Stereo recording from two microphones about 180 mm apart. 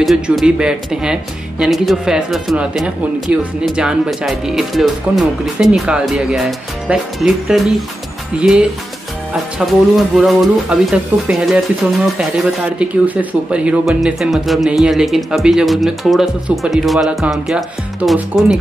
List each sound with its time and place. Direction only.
0.0 s speech: centre (ahead or behind)
12.7 s speech: 10° right (ahead or behind)